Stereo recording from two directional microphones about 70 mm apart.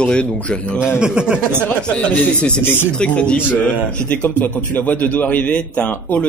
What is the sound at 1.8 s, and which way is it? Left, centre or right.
A man's voice, centre.